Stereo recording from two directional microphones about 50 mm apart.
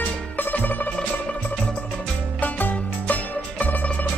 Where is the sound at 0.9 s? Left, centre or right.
Left.